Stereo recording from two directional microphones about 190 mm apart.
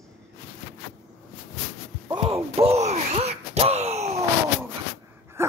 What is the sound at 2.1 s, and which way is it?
Gasp, 30° right (ahead or behind).